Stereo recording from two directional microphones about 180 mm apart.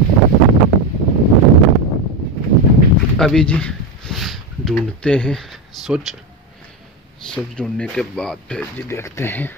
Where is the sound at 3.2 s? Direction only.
5° left (ahead or behind).